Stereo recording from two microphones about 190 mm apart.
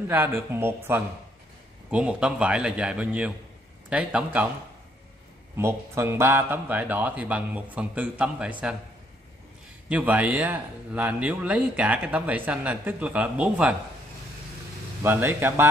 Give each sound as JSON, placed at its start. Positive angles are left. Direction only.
{"t": 0.1, "sound": "a man's voice", "side_deg": -10}
{"t": 5.6, "sound": "speech", "side_deg": -15}
{"t": 9.8, "sound": "speech", "side_deg": -10}
{"t": 15.0, "sound": "speech", "side_deg": -10}